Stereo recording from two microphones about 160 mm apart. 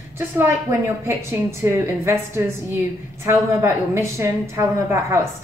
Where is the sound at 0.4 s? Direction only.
15° right (ahead or behind).